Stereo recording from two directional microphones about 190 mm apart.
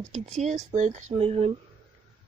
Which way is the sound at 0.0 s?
35° right (ahead or behind).